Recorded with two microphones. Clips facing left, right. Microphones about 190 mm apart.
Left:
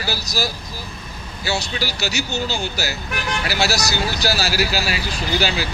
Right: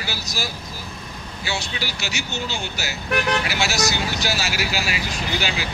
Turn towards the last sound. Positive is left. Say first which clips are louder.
# left 4 dB
turn(degrees=35)  # may be behind; listen again after turning